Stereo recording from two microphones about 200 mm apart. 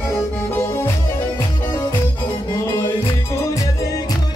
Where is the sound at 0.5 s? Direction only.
10° left (ahead or behind).